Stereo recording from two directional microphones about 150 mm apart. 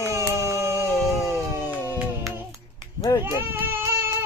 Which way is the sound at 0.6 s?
20° left (ahead or behind).